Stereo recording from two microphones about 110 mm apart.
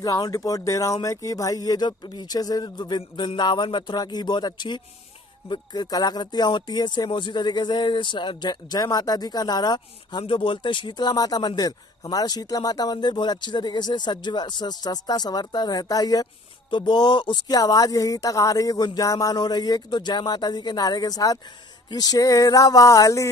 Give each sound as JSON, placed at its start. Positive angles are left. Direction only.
{"t": 0.0, "sound": "speech", "side_deg": 30}
{"t": 10.2, "sound": "speech", "side_deg": 50}